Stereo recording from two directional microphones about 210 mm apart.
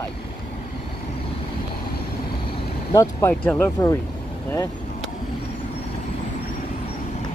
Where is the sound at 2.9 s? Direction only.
15° left (ahead or behind).